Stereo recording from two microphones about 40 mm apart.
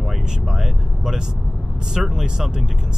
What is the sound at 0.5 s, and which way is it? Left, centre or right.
Vehicle, centre.